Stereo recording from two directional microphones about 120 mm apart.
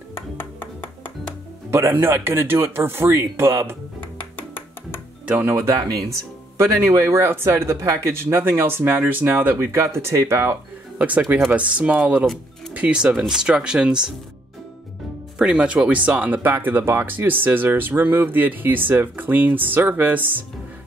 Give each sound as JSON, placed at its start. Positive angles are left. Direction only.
{"t": 0.4, "sound": "music", "side_deg": 15}
{"t": 1.7, "sound": "speech", "side_deg": -20}
{"t": 5.2, "sound": "speech", "side_deg": -15}
{"t": 15.3, "sound": "speech", "side_deg": -5}